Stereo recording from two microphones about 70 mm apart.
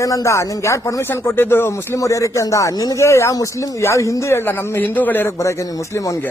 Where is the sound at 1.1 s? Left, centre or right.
Left.